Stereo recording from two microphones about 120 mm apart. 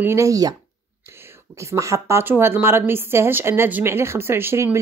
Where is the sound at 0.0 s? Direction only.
25° right (ahead or behind).